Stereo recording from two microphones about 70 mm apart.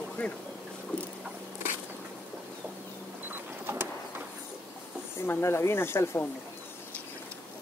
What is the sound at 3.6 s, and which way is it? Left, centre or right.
Bird, right.